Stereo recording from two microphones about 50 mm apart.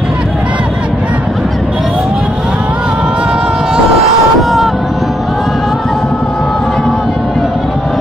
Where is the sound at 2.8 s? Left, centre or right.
Centre.